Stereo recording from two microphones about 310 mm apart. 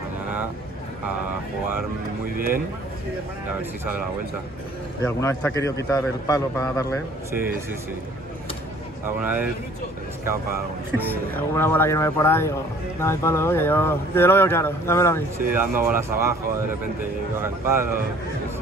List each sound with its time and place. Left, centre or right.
2.3 s speech: right
5.0 s speech: centre
9.0 s speech: centre
11.3 s speech: centre
15.3 s speech: centre
17.4 s speech: centre